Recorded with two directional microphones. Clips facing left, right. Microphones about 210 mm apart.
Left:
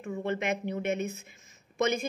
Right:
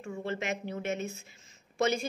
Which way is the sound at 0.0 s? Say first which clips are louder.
Left 3 dB; 15° left (ahead or behind).